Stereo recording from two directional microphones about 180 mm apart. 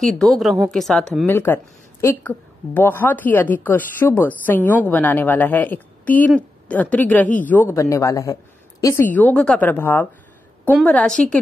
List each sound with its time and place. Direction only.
0.0 s a woman's voice: centre (ahead or behind)